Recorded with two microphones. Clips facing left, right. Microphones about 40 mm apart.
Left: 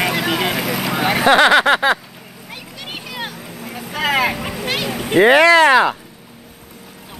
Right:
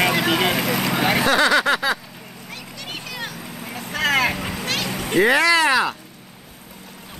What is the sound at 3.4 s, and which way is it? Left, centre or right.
Vehicle, centre.